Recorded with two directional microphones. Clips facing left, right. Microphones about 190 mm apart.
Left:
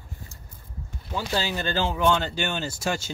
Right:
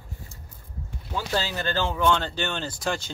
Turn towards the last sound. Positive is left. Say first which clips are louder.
# left 1 dB
turn(degrees=10)  # may be behind; listen again after turning